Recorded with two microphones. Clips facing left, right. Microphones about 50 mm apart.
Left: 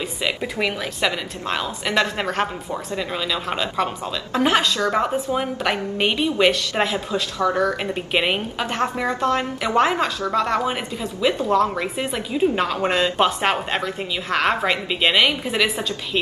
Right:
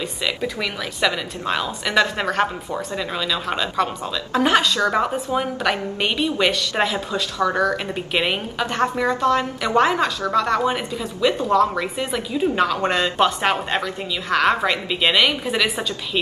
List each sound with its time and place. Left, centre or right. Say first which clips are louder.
0.2 s speech: left 2 dB; centre
1.0 s a woman's voice: right 3 dB; centre